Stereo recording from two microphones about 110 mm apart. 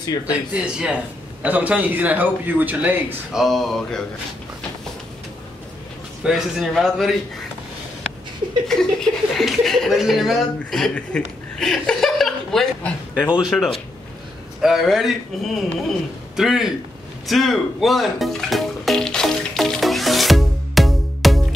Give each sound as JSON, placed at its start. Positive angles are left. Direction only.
{"t": 0.3, "sound": "a man's voice", "side_deg": -10}
{"t": 3.3, "sound": "speech", "side_deg": 0}
{"t": 6.2, "sound": "speech", "side_deg": 0}
{"t": 8.6, "sound": "speech", "side_deg": 5}
{"t": 17.3, "sound": "music", "side_deg": 0}